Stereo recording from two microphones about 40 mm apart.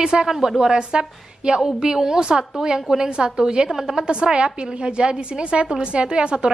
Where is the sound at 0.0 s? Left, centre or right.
Centre.